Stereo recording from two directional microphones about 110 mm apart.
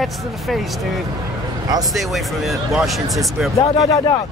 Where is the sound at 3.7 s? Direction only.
30° left (ahead or behind).